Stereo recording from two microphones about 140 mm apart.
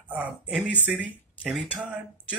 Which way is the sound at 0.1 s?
10° right (ahead or behind).